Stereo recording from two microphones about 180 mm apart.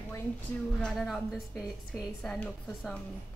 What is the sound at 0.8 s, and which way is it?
A woman's voice, centre (ahead or behind).